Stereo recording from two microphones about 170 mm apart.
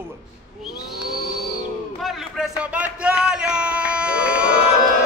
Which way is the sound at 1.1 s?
Centre (ahead or behind).